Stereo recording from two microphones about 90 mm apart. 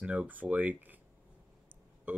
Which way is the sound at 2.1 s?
20° right (ahead or behind).